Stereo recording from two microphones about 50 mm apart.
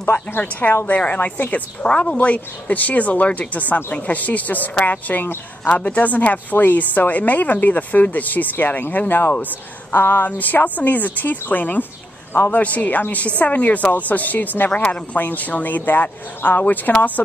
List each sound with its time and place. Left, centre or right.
0.0 s a woman's voice: left
0.4 s a woman's voice: left
14.7 s speech: left
15.1 s a woman's voice: left